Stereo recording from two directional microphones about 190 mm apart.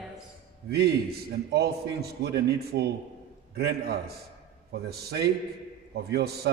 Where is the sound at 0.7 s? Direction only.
55° right (ahead or behind).